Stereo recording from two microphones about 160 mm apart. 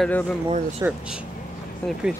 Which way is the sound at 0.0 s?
5° left (ahead or behind).